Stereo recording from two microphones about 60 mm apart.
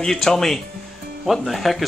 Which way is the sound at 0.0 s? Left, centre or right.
Centre.